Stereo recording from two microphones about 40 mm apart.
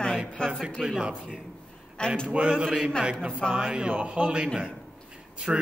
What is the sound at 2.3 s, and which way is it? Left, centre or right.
Speech, right.